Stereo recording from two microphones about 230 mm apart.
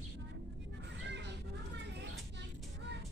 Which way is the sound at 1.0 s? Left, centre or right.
Right.